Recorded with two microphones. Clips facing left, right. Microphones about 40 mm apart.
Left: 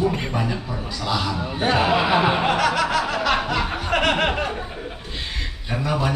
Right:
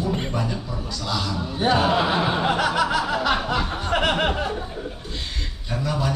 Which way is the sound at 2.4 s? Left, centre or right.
Left.